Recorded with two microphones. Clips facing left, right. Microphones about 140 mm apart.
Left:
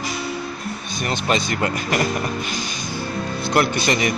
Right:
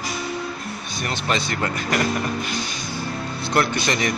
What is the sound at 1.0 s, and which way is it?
Speech, 15° left (ahead or behind).